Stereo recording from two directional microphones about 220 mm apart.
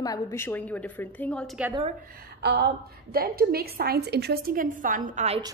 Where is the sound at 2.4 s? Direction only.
50° right (ahead or behind); by 5.4 s 35° right (ahead or behind).